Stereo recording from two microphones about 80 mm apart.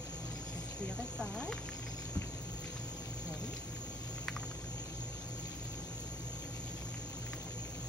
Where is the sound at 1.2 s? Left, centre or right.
Centre.